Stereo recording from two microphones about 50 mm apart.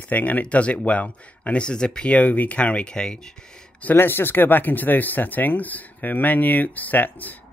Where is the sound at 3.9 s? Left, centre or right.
Left.